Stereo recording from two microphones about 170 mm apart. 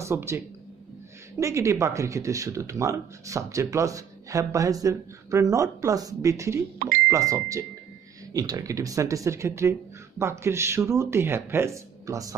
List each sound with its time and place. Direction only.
0.0 s speech: 15° right (ahead or behind)
1.4 s speech: 20° right (ahead or behind)